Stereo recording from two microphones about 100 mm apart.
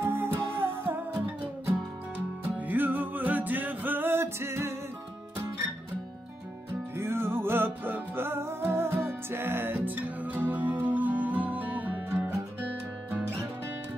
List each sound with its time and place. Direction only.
0.0 s music: 25° right (ahead or behind)
2.1 s music: 20° right (ahead or behind)
7.0 s music: 25° right (ahead or behind)